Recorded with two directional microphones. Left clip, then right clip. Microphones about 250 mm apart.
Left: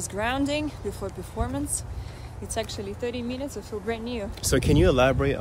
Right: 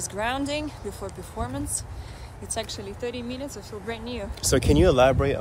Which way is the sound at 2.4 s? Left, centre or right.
Centre.